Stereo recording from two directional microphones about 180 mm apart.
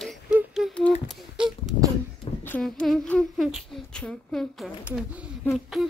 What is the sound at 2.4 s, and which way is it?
Speech, 5° left (ahead or behind).